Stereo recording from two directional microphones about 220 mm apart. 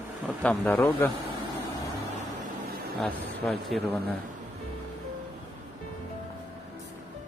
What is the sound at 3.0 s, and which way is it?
A man's voice, centre (ahead or behind).